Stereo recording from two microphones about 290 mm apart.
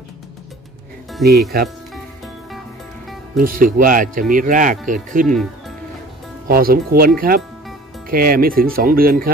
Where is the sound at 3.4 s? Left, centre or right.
Right.